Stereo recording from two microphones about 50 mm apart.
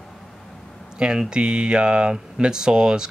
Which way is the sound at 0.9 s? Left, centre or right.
Centre.